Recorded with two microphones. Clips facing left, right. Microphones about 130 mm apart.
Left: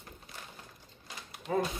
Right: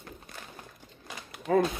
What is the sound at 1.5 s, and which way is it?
Speech, 75° right (ahead or behind).